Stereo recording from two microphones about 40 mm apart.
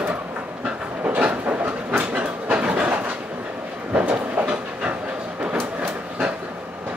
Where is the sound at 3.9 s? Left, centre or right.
Right.